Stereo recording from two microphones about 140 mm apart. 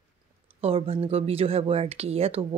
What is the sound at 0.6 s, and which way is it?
Speech, 45° right (ahead or behind).